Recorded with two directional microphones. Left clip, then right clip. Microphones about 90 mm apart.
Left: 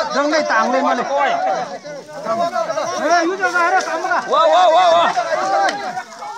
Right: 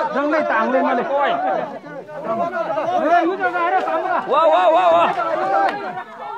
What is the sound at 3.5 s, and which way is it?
Speech, 30° left (ahead or behind).